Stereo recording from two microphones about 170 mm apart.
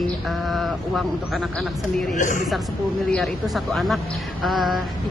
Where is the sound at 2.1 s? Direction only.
50° left (ahead or behind).